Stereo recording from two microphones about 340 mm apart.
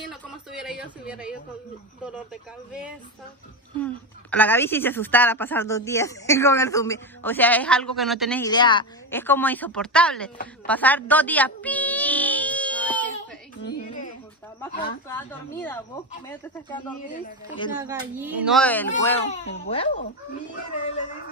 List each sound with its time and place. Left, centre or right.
0.1 s a sound: centre
3.8 s a woman's voice: centre
10.7 s a sound: centre
14.6 s a woman's voice: centre
17.1 s a man's voice: left
17.7 s a woman's voice: centre